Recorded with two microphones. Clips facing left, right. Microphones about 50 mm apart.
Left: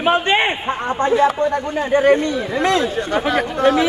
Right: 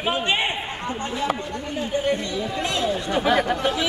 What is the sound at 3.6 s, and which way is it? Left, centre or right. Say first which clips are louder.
Speech: left 9 dB; left.